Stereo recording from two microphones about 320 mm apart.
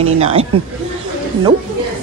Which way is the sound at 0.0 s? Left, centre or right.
Centre.